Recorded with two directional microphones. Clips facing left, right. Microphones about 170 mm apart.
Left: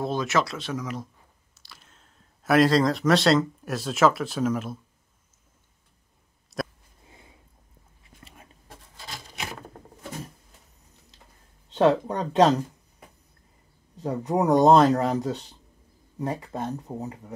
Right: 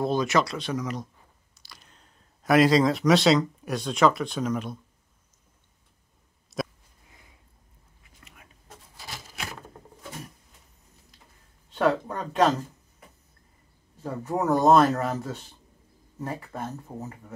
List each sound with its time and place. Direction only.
0.0 s speech: centre (ahead or behind)
6.5 s a sound: centre (ahead or behind)
7.1 s a sound: 25° left (ahead or behind)
8.0 s whispering: 30° left (ahead or behind)
11.7 s speech: 20° left (ahead or behind)
13.9 s speech: 15° left (ahead or behind)
14.7 s speech: 30° left (ahead or behind)